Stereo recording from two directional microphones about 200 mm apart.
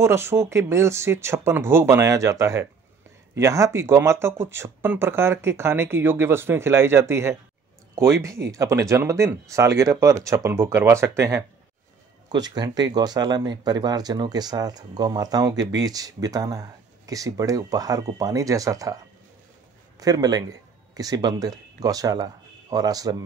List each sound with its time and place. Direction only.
0.0 s speech: 15° right (ahead or behind)
20.0 s speech: 20° right (ahead or behind)